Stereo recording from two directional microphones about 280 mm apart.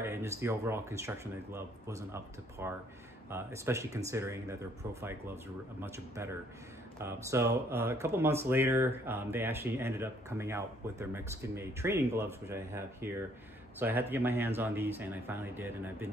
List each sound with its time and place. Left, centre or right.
0.0 s speech: centre